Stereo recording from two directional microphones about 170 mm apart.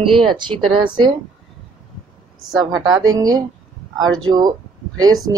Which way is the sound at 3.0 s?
20° right (ahead or behind).